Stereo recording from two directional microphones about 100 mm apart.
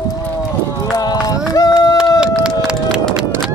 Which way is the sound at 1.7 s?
45° left (ahead or behind).